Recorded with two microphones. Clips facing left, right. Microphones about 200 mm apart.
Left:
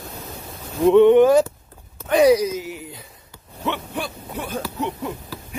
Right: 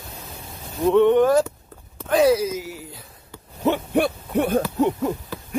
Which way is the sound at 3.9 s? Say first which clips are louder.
Right 9 dB; 60° right (ahead or behind).